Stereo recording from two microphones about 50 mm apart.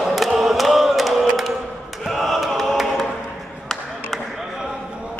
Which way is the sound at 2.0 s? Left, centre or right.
Centre.